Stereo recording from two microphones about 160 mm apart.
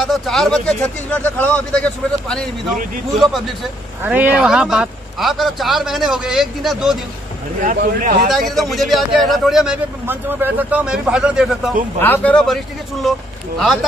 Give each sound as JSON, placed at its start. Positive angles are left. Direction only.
{"t": 0.0, "sound": "a man's voice", "side_deg": 0}
{"t": 4.0, "sound": "a man's voice", "side_deg": -10}
{"t": 7.6, "sound": "speech", "side_deg": -60}
{"t": 8.5, "sound": "a man's voice", "side_deg": 0}
{"t": 12.0, "sound": "speech", "side_deg": 10}